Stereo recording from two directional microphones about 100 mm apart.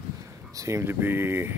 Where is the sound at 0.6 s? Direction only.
25° right (ahead or behind).